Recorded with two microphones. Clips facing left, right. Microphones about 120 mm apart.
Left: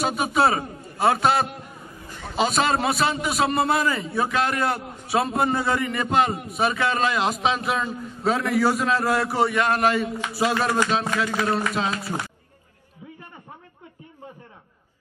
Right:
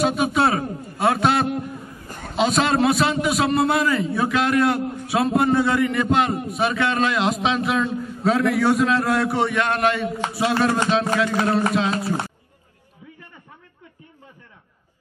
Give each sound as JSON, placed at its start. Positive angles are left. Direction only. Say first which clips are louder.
{"t": 0.0, "sound": "a man's voice", "louder": "right 2 dB", "side_deg": 0}
{"t": 2.0, "sound": "a sound", "louder": "left 1 dB", "side_deg": -50}
{"t": 2.3, "sound": "a man's voice", "louder": "right 2 dB", "side_deg": 0}
{"t": 11.9, "sound": "speech", "louder": "right 5 dB", "side_deg": -30}